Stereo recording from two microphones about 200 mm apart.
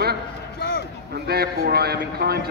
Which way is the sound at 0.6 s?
55° left (ahead or behind).